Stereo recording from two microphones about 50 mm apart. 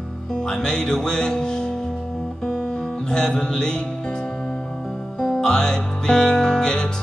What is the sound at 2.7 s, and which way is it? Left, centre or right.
Music, centre.